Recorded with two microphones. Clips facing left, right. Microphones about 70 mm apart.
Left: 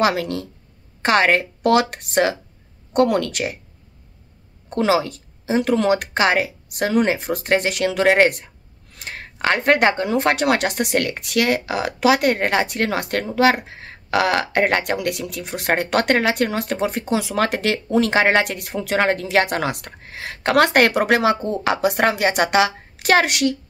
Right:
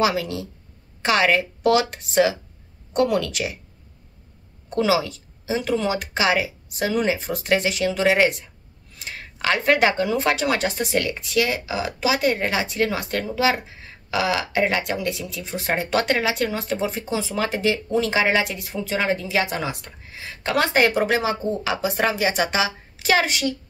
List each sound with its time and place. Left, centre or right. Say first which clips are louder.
0.0 s speech: left 2 dB; left
4.6 s speech: left 2 dB; left